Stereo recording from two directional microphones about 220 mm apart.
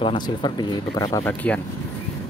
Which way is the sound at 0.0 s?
20° left (ahead or behind).